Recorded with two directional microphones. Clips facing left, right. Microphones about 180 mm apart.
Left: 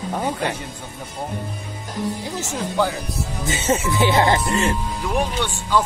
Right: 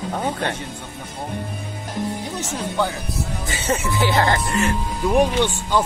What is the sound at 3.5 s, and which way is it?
Speech, 20° left (ahead or behind).